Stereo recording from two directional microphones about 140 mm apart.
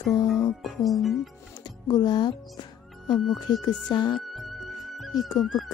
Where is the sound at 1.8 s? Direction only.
30° left (ahead or behind).